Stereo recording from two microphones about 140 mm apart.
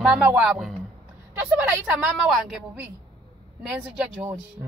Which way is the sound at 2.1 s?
Centre (ahead or behind).